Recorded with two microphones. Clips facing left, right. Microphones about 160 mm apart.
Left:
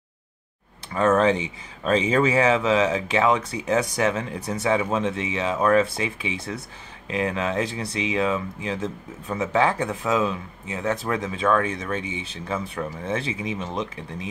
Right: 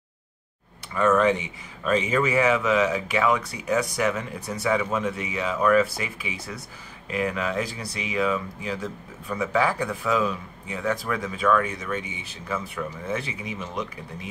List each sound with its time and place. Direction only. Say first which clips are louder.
0.9 s speech: left 1 dB; 30° left (ahead or behind)